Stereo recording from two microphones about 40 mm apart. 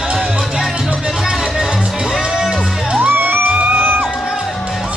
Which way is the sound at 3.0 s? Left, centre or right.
Right.